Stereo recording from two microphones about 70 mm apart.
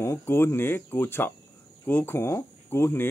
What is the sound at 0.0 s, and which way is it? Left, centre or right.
Speech, left.